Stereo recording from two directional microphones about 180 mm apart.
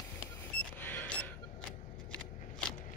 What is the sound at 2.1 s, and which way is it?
Scissors, 5° left (ahead or behind).